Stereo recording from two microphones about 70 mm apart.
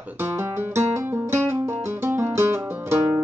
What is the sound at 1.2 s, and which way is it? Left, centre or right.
Music, right.